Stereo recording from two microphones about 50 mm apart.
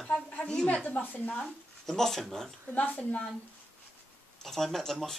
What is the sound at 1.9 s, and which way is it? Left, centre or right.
Speech, centre.